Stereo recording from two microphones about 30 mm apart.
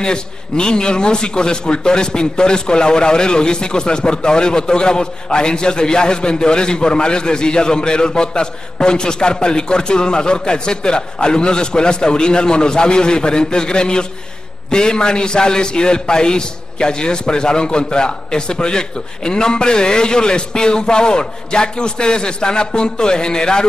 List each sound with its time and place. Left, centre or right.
0.0 s a man's voice: left